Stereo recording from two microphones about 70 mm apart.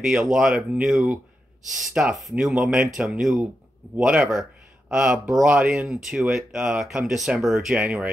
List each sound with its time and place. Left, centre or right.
0.0 s speech: centre
2.3 s speech: centre
7.8 s speech: right